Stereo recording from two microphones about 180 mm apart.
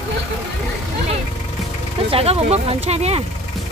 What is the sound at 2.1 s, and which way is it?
Speech, 35° right (ahead or behind).